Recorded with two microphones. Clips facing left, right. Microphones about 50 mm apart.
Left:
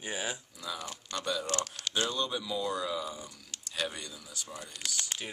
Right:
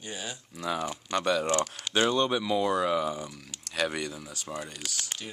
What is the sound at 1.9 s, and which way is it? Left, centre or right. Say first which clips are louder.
Speech: right 7 dB; right.